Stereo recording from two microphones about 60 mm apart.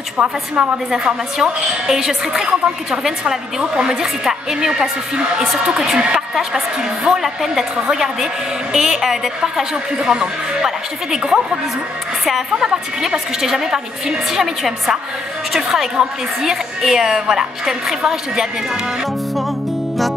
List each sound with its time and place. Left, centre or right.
0.2 s a woman's voice: right
0.9 s a woman's voice: centre